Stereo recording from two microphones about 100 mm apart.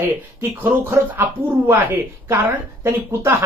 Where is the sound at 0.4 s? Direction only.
20° right (ahead or behind).